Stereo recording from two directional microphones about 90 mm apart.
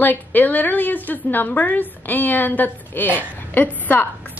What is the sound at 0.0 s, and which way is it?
A woman's voice, 20° left (ahead or behind).